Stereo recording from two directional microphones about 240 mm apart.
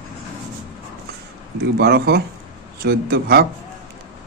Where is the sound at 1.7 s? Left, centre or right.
Right.